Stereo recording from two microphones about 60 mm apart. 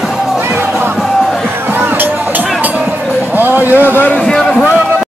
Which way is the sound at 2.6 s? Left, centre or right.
Right.